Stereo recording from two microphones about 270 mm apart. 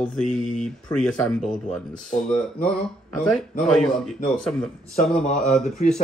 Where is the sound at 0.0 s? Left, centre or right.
Centre.